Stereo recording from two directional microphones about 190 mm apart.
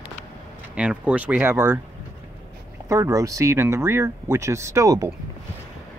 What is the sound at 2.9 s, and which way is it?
Speech, 15° right (ahead or behind).